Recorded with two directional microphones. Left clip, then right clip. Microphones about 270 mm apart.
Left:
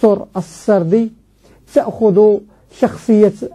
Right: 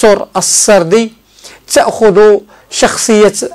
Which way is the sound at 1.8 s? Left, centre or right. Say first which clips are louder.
Right 6 dB; right.